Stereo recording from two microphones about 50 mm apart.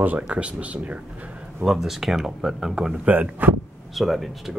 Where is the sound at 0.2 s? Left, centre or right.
Right.